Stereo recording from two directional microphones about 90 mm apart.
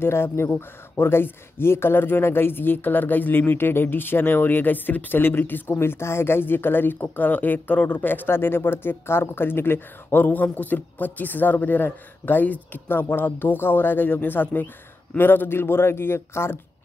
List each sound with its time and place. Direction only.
0.0 s speech: 25° left (ahead or behind)